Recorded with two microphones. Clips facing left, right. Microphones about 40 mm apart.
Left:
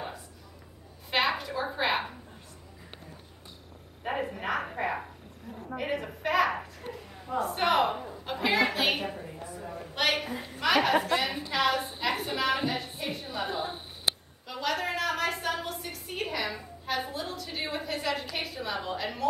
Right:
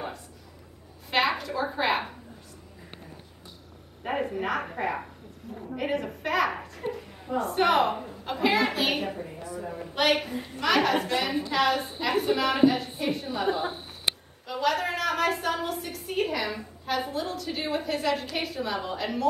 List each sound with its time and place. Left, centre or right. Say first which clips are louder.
1.1 s a woman's voice: right 2 dB; centre
4.0 s a woman's voice: right 3 dB; centre
6.8 s a sound: right 13 dB; right
7.2 s a woman's voice: right 3 dB; centre